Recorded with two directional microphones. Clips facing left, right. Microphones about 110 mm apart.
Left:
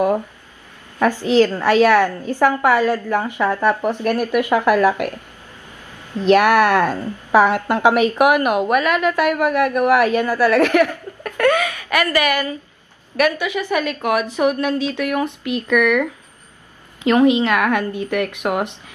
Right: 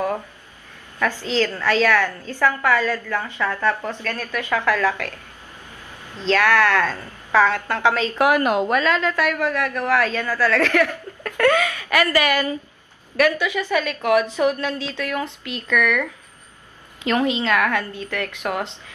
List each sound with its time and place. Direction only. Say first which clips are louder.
0.9 s a woman's voice: left 7 dB; 15° left (ahead or behind)
13.1 s a woman's voice: left 1 dB; 15° left (ahead or behind)